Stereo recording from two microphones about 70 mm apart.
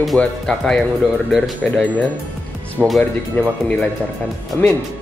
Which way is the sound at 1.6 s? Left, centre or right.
Centre.